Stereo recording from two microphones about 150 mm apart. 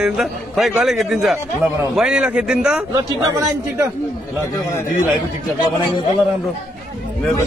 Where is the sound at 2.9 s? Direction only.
25° right (ahead or behind).